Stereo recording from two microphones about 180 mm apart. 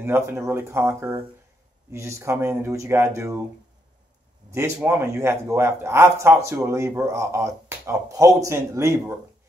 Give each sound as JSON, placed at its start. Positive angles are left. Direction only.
{"t": 0.0, "sound": "a man's voice", "side_deg": -15}
{"t": 4.5, "sound": "a man's voice", "side_deg": -15}